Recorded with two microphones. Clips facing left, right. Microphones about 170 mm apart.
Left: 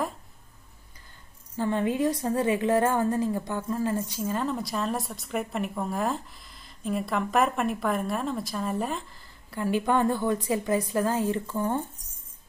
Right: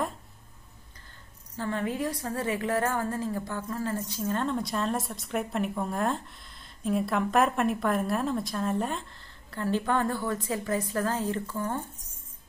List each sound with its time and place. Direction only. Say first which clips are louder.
1.6 s a woman's voice: left 5 dB; 20° left (ahead or behind)